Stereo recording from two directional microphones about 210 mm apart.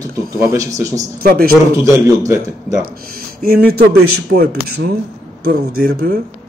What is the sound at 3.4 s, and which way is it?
Speech, 45° right (ahead or behind).